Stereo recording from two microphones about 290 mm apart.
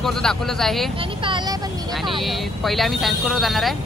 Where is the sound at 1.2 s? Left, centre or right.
Centre.